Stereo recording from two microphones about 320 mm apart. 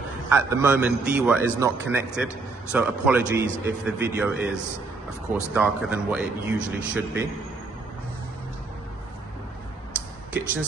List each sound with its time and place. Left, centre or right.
0.3 s a man's voice: centre